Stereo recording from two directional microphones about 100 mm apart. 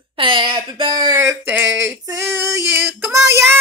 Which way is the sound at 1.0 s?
30° right (ahead or behind).